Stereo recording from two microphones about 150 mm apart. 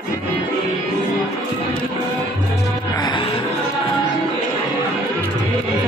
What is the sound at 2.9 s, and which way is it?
Music, 30° left (ahead or behind).